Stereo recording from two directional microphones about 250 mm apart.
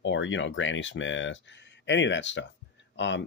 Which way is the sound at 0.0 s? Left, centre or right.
Left.